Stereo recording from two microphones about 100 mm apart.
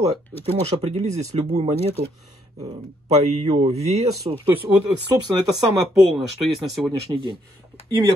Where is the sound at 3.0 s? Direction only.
90° right.